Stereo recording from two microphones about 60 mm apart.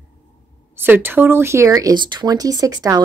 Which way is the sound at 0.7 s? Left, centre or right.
Right.